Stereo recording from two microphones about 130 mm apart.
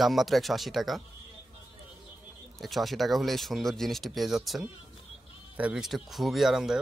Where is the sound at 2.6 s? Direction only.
Centre (ahead or behind).